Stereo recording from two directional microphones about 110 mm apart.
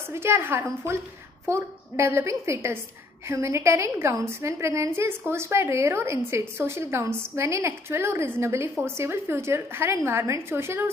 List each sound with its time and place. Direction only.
0.1 s a woman's voice: 20° right (ahead or behind)